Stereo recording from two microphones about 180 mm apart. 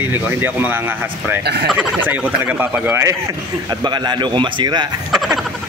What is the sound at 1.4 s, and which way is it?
Speech, 65° right (ahead or behind).